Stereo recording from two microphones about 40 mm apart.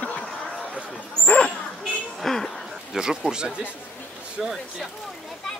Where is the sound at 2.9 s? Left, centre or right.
Centre.